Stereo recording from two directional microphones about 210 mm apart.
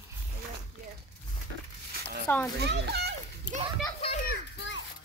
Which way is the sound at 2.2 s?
10° left (ahead or behind).